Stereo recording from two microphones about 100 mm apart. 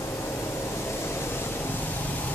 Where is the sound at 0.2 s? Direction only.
25° left (ahead or behind).